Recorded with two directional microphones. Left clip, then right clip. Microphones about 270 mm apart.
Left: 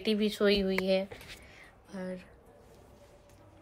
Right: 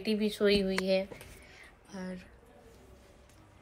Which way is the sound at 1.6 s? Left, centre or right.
Centre.